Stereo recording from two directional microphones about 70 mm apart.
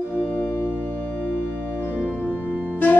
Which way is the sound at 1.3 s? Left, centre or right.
Right.